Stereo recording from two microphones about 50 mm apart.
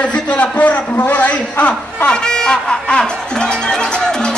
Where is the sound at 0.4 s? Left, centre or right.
Left.